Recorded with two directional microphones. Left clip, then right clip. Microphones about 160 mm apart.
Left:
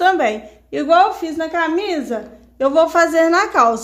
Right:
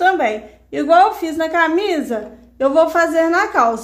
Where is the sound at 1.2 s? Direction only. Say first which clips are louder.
Right 3 dB; centre (ahead or behind); by 3.8 s 20° left (ahead or behind).